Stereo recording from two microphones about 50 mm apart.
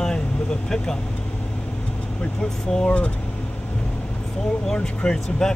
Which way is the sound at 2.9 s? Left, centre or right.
Left.